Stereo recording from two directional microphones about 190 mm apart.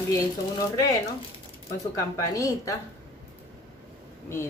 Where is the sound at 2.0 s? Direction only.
15° left (ahead or behind).